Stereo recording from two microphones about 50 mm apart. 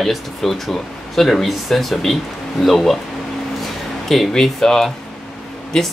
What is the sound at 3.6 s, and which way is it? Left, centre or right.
Music, centre.